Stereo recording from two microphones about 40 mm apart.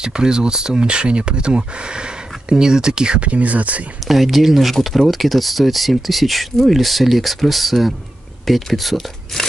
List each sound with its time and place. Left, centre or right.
0.0 s speech: centre
3.2 s speech: right
4.1 s speech: centre